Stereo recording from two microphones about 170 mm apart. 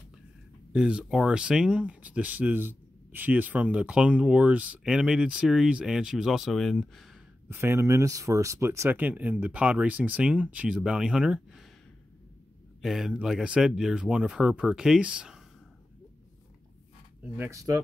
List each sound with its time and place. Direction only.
0.7 s speech: 5° right (ahead or behind)
7.4 s speech: 15° right (ahead or behind)
12.8 s speech: centre (ahead or behind)
17.4 s speech: 20° right (ahead or behind)